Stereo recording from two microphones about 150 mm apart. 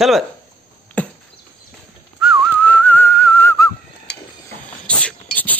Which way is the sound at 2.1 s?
5° right (ahead or behind).